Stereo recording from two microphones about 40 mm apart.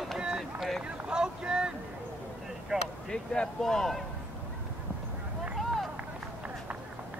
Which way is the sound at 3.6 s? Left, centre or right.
Centre.